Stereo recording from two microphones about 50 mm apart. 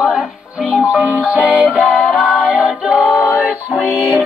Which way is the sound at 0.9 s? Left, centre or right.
Right.